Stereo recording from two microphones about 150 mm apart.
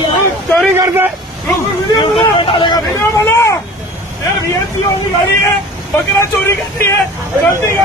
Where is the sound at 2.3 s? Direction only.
35° left (ahead or behind).